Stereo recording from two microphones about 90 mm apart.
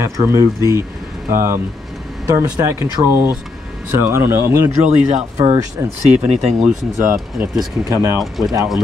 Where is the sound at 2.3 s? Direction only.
30° right (ahead or behind).